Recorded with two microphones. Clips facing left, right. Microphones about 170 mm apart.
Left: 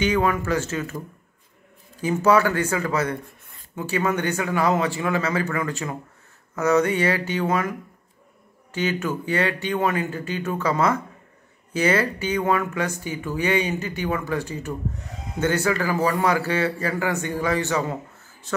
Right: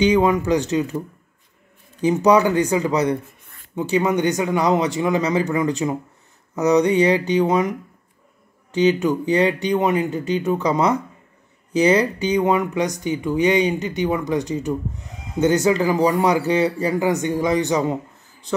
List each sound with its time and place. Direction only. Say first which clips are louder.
0.0 s speech: right 5 dB; 15° right (ahead or behind)
8.7 s speech: right 8 dB; 20° right (ahead or behind)